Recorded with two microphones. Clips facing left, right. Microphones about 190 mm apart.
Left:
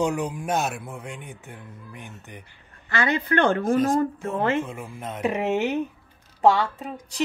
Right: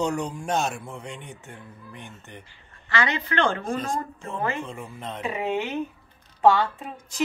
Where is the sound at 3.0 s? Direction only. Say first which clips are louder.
Left 3 dB; 55° left (ahead or behind).